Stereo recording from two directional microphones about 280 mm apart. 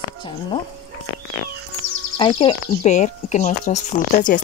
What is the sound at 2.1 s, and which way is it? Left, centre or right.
Speech, centre.